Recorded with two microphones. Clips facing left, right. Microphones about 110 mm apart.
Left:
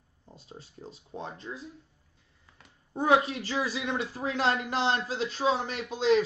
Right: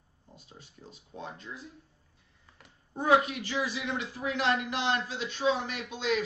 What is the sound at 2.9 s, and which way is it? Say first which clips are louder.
Speech: left 1 dB; 25° left (ahead or behind).